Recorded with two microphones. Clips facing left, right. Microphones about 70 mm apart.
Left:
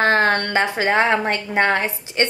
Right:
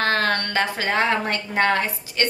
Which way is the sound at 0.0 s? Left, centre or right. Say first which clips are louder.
Left 5 dB; left.